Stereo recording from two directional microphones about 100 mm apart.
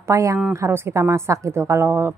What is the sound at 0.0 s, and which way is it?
A woman's voice, 30° right (ahead or behind).